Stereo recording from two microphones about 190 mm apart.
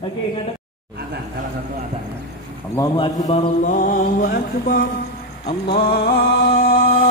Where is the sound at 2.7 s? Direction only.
20° left (ahead or behind).